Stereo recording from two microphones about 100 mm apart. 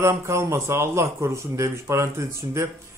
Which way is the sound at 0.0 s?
30° right (ahead or behind).